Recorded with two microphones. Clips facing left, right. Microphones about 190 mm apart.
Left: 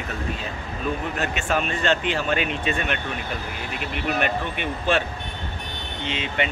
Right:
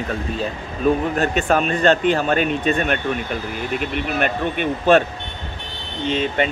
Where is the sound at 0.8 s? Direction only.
40° right (ahead or behind).